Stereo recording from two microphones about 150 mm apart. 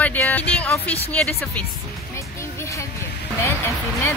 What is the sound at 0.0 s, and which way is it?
Music, 10° left (ahead or behind).